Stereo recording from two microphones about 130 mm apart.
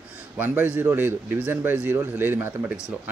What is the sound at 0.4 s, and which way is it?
A man's voice, 15° right (ahead or behind).